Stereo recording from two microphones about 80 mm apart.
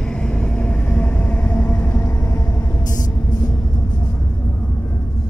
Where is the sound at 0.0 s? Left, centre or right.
Centre.